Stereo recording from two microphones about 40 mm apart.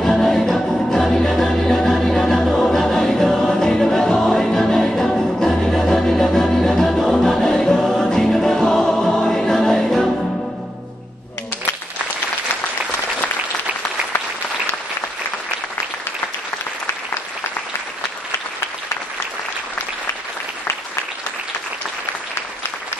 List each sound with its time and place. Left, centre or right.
0.1 s music: centre